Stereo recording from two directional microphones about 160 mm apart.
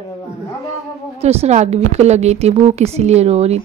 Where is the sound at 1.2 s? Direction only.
40° right (ahead or behind).